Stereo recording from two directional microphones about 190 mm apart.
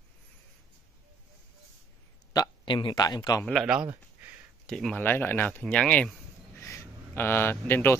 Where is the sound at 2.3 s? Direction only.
20° left (ahead or behind).